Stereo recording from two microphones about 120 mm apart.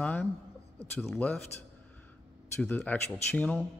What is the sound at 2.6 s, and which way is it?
Speech, 15° left (ahead or behind).